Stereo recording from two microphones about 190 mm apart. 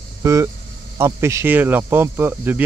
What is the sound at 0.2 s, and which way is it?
Speech, 15° right (ahead or behind).